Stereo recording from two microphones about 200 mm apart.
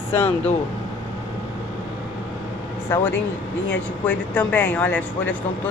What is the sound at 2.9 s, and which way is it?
Speech, 15° left (ahead or behind).